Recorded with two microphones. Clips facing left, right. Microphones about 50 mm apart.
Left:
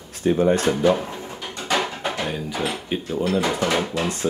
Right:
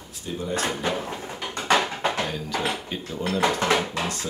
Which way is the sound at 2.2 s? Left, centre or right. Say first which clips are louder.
Left 1 dB; centre.